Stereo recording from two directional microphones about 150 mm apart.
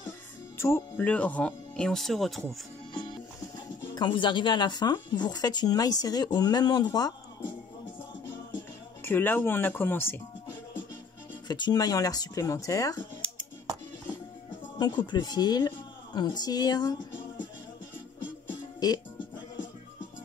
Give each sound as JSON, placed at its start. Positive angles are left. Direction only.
{"t": 0.6, "sound": "speech", "side_deg": 15}
{"t": 2.9, "sound": "speech", "side_deg": 30}
{"t": 9.0, "sound": "speech", "side_deg": 15}
{"t": 11.4, "sound": "speech", "side_deg": 30}
{"t": 14.8, "sound": "a woman's voice", "side_deg": 30}
{"t": 18.5, "sound": "music", "side_deg": 30}